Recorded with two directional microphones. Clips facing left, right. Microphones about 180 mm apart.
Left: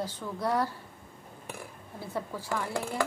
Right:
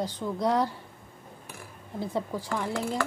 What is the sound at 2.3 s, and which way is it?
Speech, 15° right (ahead or behind).